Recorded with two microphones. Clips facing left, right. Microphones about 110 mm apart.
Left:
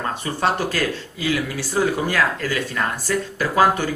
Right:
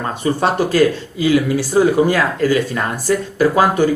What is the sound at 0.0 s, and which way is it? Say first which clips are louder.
Speech: right 5 dB; 15° right (ahead or behind).